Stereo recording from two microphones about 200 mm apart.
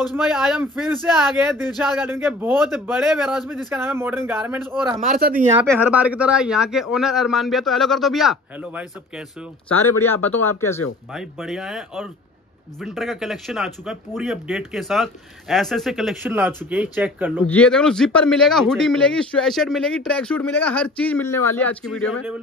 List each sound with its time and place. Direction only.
0.1 s a man's voice: centre (ahead or behind)
5.1 s speech: 45° right (ahead or behind)
5.8 s speech: 5° right (ahead or behind)
9.7 s speech: 10° left (ahead or behind)
11.1 s a man's voice: centre (ahead or behind)
17.5 s speech: 5° left (ahead or behind)